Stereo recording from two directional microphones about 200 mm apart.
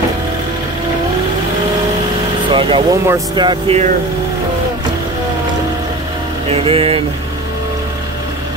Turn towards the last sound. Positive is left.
turn(degrees=-30)  # may be behind; listen again after turning